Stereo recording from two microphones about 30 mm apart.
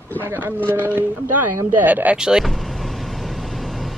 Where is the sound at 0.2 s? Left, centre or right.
Right.